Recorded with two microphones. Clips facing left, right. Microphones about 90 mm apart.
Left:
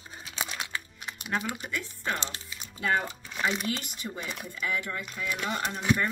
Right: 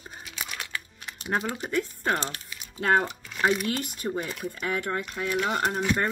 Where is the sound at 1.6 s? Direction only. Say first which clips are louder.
Right 7 dB; 45° right (ahead or behind).